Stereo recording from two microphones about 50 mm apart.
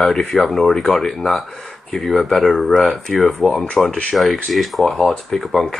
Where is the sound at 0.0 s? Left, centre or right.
Centre.